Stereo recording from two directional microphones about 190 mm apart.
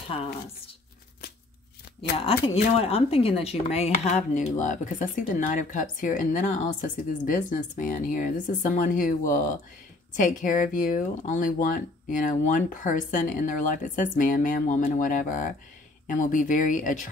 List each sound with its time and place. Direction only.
2.1 s speech: 30° left (ahead or behind)